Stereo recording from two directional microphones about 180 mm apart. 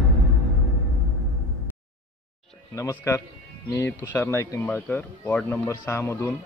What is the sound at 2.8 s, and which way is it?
Speech, 15° left (ahead or behind).